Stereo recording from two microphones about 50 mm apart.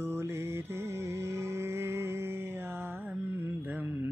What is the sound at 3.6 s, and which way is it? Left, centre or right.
Mantra, right.